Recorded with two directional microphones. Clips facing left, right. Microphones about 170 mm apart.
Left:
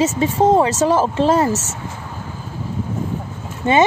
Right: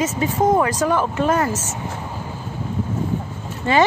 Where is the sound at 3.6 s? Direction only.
20° left (ahead or behind).